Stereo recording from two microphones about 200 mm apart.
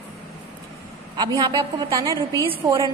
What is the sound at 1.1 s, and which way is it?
A woman's voice, 20° right (ahead or behind).